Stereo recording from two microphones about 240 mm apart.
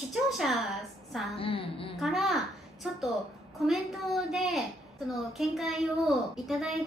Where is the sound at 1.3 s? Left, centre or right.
Left.